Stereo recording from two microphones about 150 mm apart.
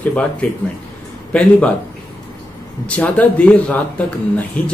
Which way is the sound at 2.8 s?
10° left (ahead or behind).